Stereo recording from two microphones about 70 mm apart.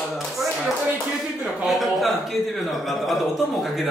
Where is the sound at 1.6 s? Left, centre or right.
Centre.